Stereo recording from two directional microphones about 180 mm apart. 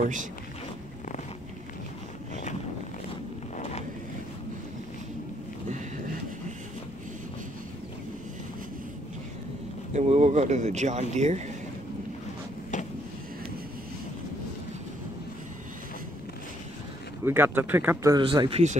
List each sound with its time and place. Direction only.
0.0 s speech: 45° right (ahead or behind)
9.9 s speech: 40° right (ahead or behind)
12.7 s a sound: 45° left (ahead or behind)
17.2 s speech: 10° right (ahead or behind)
18.1 s speech: 25° right (ahead or behind)